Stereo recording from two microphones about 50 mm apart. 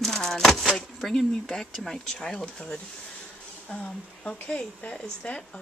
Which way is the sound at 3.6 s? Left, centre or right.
Left.